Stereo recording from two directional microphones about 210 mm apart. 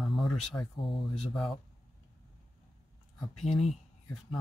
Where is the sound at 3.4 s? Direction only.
30° left (ahead or behind).